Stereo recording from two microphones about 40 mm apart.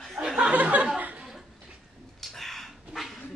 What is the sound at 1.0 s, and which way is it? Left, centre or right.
Chuckle, right.